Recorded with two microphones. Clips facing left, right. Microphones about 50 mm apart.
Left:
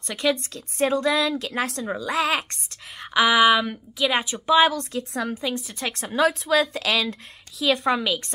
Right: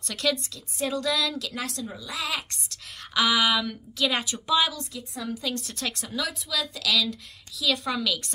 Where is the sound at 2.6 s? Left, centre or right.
Left.